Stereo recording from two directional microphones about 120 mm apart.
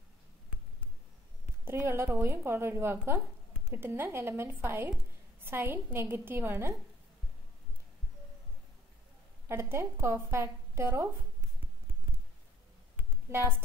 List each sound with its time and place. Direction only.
1.4 s a sound: 20° right (ahead or behind)
2.1 s a woman's voice: 20° right (ahead or behind)
9.5 s a woman's voice: 20° right (ahead or behind)
13.3 s a woman's voice: 20° right (ahead or behind)